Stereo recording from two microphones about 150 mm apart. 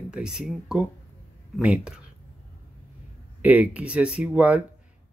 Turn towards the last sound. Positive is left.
turn(degrees=-10)  # may be behind; listen again after turning